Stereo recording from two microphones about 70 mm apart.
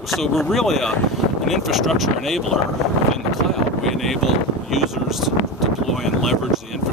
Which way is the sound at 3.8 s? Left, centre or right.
Centre.